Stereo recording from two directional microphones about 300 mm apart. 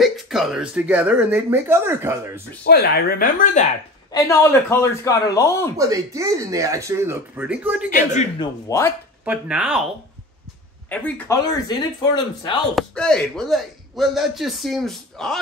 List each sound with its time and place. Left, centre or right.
0.0 s speech: centre
2.6 s speech: left
4.1 s speech: centre
5.8 s speech: centre
7.9 s a man's voice: left
8.6 s speech: centre
9.2 s speech: centre
10.9 s speech: centre
12.7 s speech: centre